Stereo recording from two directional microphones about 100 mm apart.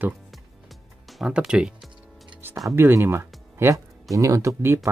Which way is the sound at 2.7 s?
25° right (ahead or behind).